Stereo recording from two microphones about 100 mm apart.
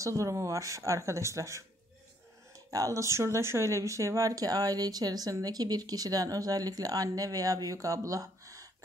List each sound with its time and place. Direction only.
0.0 s speech: 30° right (ahead or behind)